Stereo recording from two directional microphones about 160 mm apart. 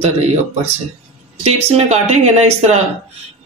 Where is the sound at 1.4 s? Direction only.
40° right (ahead or behind).